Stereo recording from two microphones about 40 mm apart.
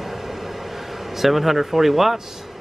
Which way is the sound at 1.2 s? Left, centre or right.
Centre.